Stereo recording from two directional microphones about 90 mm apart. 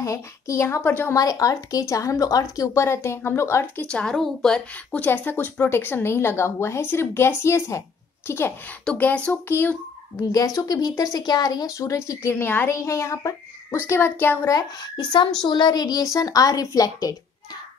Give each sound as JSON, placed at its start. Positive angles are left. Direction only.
{"t": 0.0, "sound": "speech", "side_deg": 35}
{"t": 1.1, "sound": "speech", "side_deg": 40}
{"t": 3.8, "sound": "a woman's voice", "side_deg": 10}
{"t": 5.0, "sound": "speech", "side_deg": 20}
{"t": 8.8, "sound": "a woman's voice", "side_deg": 15}
{"t": 9.5, "sound": "speech", "side_deg": 25}
{"t": 10.3, "sound": "speech", "side_deg": 40}
{"t": 14.5, "sound": "a woman's voice", "side_deg": 50}